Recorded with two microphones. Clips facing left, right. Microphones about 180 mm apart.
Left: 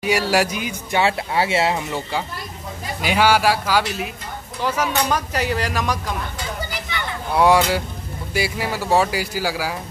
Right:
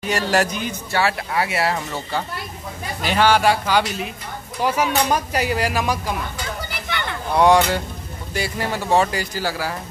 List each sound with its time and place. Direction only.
0.0 s speech: 10° left (ahead or behind)
1.0 s speech: 25° left (ahead or behind); by 4.1 s 5° left (ahead or behind)
4.6 s speech: 10° right (ahead or behind)
7.3 s speech: 5° left (ahead or behind)